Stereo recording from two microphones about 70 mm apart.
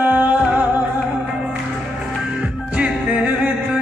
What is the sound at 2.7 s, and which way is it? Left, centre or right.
Music, centre.